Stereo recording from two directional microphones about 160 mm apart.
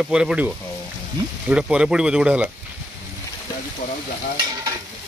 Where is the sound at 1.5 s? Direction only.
5° right (ahead or behind).